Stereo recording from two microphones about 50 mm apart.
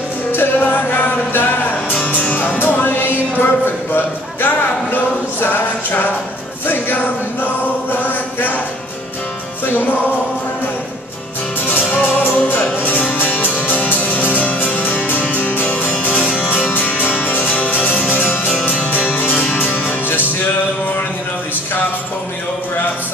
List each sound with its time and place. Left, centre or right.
0.3 s music: left
3.3 s speech: left
7.9 s music: left
11.9 s music: left